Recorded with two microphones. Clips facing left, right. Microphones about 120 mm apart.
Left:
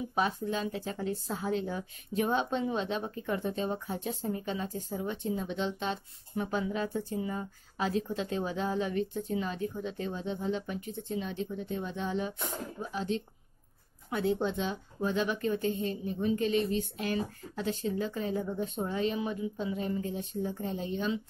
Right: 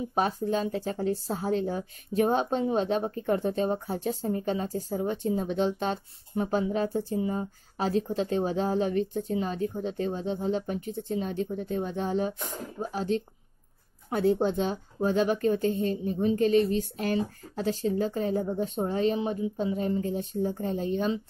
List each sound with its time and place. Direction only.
0.1 s a woman's voice: 40° right (ahead or behind)
6.3 s a woman's voice: 35° right (ahead or behind)